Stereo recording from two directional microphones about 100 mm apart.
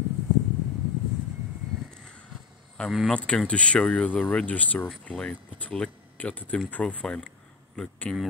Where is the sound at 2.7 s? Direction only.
Centre (ahead or behind).